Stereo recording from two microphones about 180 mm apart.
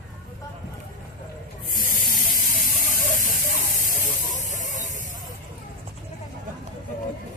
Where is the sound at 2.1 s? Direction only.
45° left (ahead or behind).